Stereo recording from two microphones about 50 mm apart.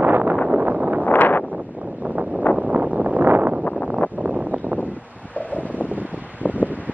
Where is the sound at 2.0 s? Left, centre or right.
Right.